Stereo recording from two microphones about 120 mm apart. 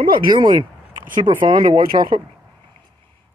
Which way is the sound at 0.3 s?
30° right (ahead or behind).